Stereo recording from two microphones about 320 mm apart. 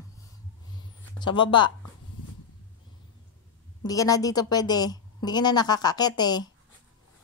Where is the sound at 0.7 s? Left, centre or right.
Centre.